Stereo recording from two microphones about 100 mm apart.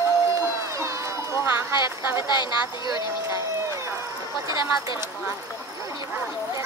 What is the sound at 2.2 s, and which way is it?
Speech, 45° left (ahead or behind).